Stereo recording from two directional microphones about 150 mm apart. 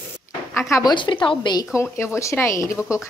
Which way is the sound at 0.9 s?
35° left (ahead or behind).